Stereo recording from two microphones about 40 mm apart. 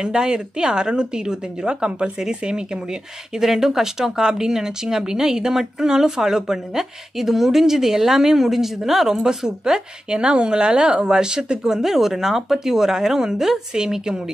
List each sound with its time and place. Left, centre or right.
0.0 s a woman's voice: centre